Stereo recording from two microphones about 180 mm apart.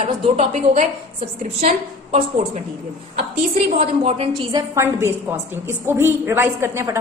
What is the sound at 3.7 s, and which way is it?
Speech, 35° right (ahead or behind).